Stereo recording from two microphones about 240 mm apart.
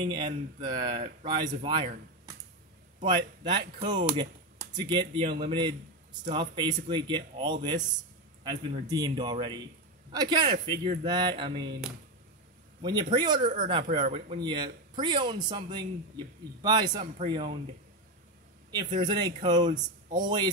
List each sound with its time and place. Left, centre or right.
0.0 s speech: centre
3.1 s a man's voice: centre
13.1 s speech: centre
13.4 s speech: right
13.7 s a man's voice: right
18.9 s speech: centre